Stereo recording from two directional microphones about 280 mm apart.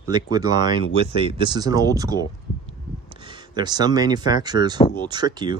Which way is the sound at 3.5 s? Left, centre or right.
Centre.